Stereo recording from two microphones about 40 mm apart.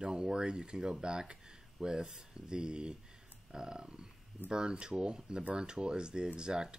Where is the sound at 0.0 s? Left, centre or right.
Centre.